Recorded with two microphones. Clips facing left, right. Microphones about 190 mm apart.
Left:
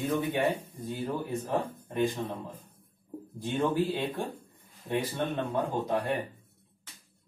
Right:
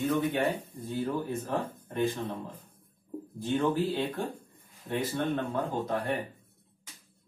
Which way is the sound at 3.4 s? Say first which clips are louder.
Even; 15° left (ahead or behind).